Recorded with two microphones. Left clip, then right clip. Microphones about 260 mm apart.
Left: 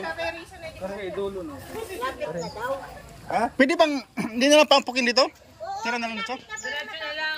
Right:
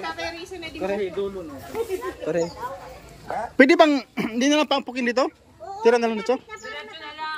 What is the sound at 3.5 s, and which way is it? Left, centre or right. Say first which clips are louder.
Speech: right 7 dB; centre.